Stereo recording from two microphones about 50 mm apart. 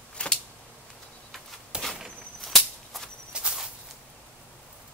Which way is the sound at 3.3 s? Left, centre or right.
Right.